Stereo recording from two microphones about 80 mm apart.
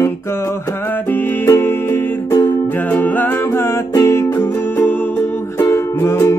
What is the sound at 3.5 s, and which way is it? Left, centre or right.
Music, left.